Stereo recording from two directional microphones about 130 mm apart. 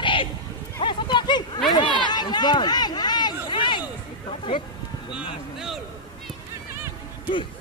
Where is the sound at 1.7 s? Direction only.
35° left (ahead or behind).